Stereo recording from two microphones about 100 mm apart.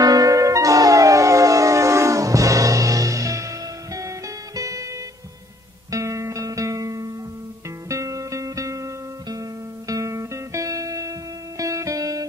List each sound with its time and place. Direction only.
0.0 s music: 35° right (ahead or behind)
4.6 s music: 35° right (ahead or behind)
5.9 s music: 35° right (ahead or behind)
9.8 s music: 35° right (ahead or behind)